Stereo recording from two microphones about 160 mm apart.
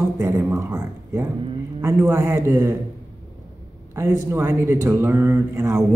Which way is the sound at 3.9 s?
15° right (ahead or behind).